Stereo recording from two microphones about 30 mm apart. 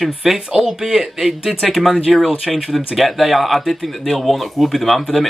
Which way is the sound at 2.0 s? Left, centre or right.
Centre.